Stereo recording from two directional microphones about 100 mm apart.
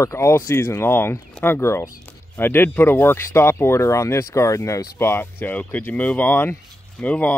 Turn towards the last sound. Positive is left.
turn(degrees=15)  # may be behind; listen again after turning